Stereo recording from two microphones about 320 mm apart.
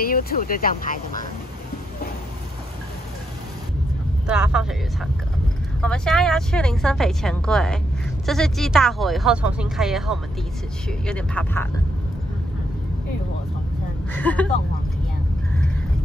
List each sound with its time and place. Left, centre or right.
0.0 s speech: left
4.3 s a woman's voice: centre
14.1 s a woman's voice: centre